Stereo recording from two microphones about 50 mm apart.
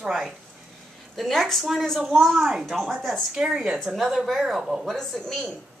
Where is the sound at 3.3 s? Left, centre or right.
Centre.